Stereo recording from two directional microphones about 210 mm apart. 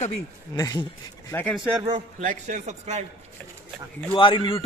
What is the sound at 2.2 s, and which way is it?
Speech, 35° right (ahead or behind).